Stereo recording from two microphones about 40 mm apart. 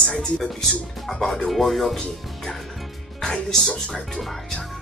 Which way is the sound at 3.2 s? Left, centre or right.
Centre.